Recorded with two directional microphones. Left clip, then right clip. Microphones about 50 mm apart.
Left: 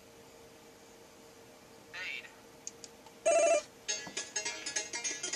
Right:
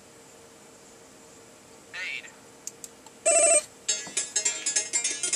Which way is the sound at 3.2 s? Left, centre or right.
Right.